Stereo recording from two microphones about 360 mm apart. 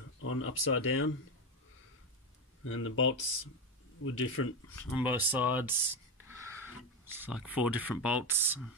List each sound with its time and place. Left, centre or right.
0.2 s speech: left
2.6 s speech: left
4.7 s speech: centre